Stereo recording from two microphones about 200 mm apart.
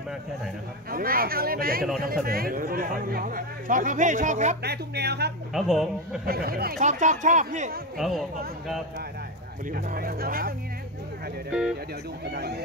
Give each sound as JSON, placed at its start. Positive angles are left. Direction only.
{"t": 0.8, "sound": "speech", "side_deg": -45}
{"t": 4.6, "sound": "speech", "side_deg": -55}
{"t": 5.5, "sound": "speech", "side_deg": 0}
{"t": 6.2, "sound": "speech", "side_deg": -50}
{"t": 8.0, "sound": "speech", "side_deg": 0}
{"t": 9.7, "sound": "speech", "side_deg": -45}
{"t": 12.3, "sound": "speech", "side_deg": -55}